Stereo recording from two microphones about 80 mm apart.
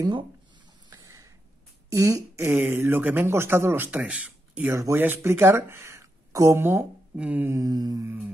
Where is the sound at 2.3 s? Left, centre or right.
Right.